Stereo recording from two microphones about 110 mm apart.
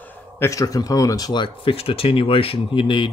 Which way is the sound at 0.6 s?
35° left (ahead or behind).